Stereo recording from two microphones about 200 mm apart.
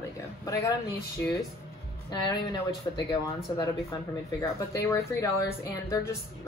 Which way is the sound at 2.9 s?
20° left (ahead or behind).